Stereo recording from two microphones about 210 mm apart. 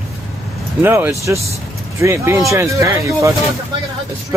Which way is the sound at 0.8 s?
10° right (ahead or behind).